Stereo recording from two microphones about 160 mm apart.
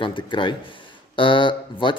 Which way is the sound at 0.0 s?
30° left (ahead or behind).